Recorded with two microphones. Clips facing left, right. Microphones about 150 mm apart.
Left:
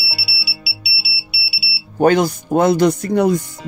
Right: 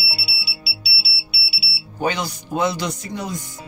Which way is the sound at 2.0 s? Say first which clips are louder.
Left 10 dB; 50° left (ahead or behind).